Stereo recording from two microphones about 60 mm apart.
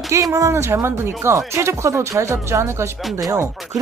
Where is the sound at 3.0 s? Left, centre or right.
Centre.